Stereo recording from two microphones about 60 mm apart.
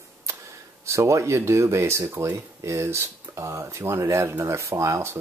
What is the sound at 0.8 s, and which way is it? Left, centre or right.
Speech, right.